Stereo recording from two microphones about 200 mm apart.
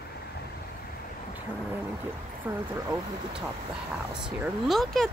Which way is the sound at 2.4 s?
10° right (ahead or behind).